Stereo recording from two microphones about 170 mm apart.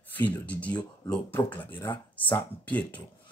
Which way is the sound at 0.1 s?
10° left (ahead or behind).